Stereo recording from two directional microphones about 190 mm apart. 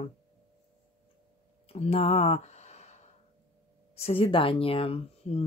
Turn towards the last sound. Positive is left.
turn(degrees=30)  # may be behind; listen again after turning